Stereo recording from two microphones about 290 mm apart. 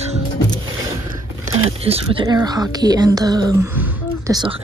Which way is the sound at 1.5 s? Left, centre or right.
Centre.